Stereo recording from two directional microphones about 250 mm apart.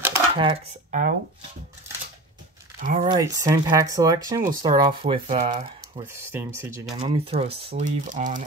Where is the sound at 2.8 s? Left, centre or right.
Right.